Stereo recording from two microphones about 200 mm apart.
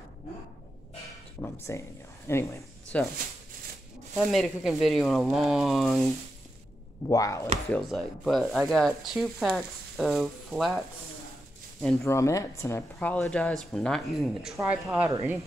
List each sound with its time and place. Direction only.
1.4 s speech: 15° left (ahead or behind)
4.2 s speech: centre (ahead or behind)
7.1 s speech: 15° left (ahead or behind)
7.7 s speech: centre (ahead or behind)
12.0 s speech: 15° left (ahead or behind); by 15.1 s 5° right (ahead or behind)